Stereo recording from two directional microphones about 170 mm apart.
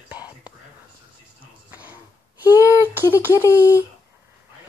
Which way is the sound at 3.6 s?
15° left (ahead or behind).